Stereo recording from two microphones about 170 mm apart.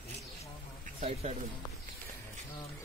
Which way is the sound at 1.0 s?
40° right (ahead or behind).